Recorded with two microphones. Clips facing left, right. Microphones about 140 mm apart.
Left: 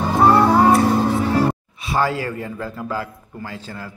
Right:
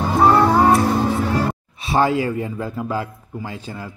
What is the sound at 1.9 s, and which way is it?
A man's voice, 20° right (ahead or behind).